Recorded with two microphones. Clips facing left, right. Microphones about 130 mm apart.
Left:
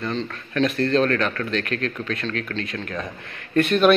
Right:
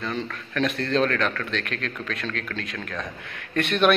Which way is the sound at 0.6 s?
Centre (ahead or behind).